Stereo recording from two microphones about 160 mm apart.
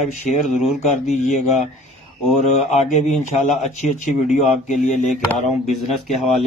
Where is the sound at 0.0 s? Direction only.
45° left (ahead or behind).